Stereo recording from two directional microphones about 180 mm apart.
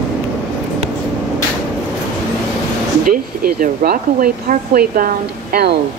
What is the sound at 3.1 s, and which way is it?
Speech, 50° right (ahead or behind).